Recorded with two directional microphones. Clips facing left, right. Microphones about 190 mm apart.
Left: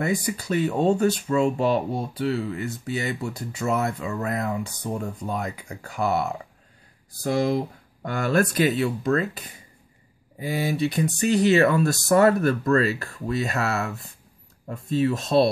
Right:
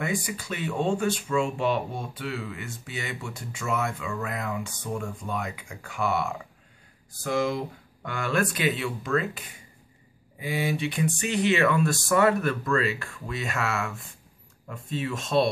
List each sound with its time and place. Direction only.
0.0 s speech: 40° left (ahead or behind)